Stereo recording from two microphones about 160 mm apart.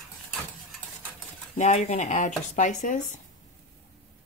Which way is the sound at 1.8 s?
45° left (ahead or behind).